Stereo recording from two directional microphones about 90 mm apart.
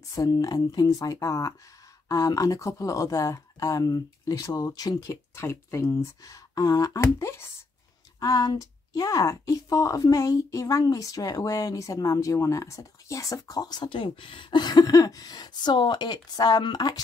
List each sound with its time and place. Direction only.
0.1 s speech: 40° left (ahead or behind)
5.1 s speech: 30° left (ahead or behind)
8.2 s speech: 45° left (ahead or behind)
13.8 s speech: 70° left (ahead or behind); by 17.0 s 50° left (ahead or behind)